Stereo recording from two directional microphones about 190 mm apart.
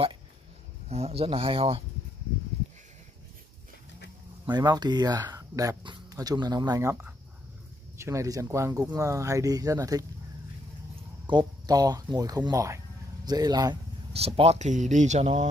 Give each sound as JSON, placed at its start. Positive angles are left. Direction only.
{"t": 0.8, "sound": "speech", "side_deg": -35}
{"t": 4.5, "sound": "speech", "side_deg": -20}
{"t": 11.2, "sound": "speech", "side_deg": -20}
{"t": 14.1, "sound": "speech", "side_deg": -30}